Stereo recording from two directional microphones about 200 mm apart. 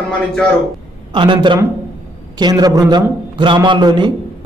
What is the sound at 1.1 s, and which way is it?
A man's voice, 25° right (ahead or behind).